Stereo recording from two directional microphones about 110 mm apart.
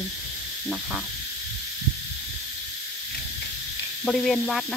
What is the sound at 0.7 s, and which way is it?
Speech, centre (ahead or behind).